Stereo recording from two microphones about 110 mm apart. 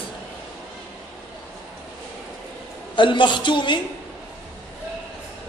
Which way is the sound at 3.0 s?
45° left (ahead or behind).